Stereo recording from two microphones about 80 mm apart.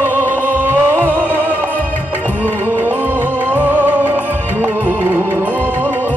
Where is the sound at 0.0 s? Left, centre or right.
Right.